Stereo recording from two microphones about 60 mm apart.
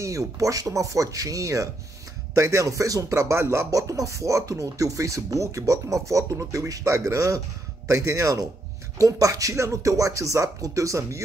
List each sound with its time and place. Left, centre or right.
0.0 s speech: right
3.7 s speech: right